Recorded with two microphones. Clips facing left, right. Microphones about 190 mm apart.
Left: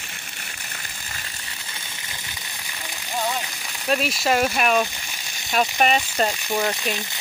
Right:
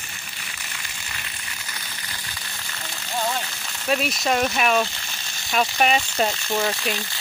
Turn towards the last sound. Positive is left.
turn(degrees=20)  # may be behind; listen again after turning